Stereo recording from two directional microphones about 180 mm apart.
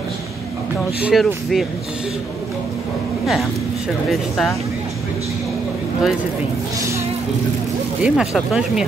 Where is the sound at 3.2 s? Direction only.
Centre (ahead or behind).